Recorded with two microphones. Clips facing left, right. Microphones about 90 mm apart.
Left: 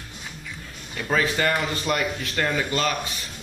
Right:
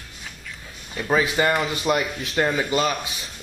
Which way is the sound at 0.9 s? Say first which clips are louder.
Right 2 dB; 15° right (ahead or behind).